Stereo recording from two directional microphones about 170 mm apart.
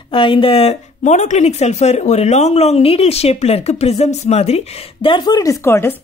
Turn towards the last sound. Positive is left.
turn(degrees=15)  # may be behind; listen again after turning